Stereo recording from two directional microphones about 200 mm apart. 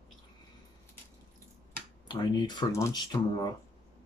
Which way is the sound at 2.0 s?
20° left (ahead or behind).